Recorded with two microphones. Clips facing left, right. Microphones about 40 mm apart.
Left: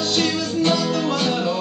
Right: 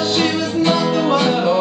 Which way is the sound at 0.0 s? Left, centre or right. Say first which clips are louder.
Right 4 dB; centre.